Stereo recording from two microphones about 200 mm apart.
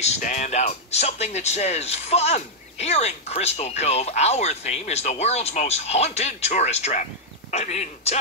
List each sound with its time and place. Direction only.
0.0 s speech: 35° left (ahead or behind)